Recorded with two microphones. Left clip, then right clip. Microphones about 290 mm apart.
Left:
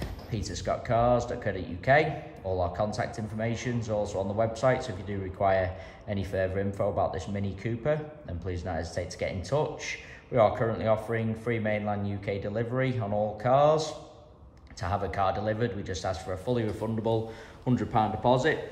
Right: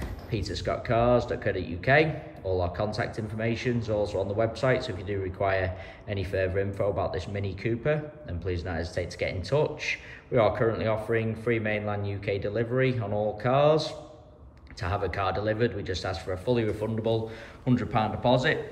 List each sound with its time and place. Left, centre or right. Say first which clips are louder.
0.3 s a man's voice: right 1 dB; centre